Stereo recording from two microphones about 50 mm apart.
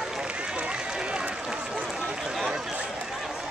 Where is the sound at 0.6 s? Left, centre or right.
Centre.